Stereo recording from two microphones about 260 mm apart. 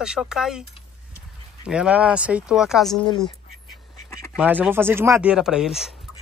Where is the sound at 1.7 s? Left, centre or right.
Centre.